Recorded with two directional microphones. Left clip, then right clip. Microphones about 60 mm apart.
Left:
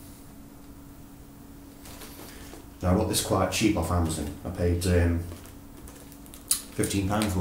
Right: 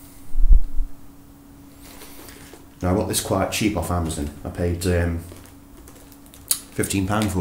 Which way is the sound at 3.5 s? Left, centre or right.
Right.